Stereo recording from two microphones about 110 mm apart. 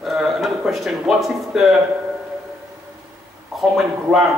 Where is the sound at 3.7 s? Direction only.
5° right (ahead or behind).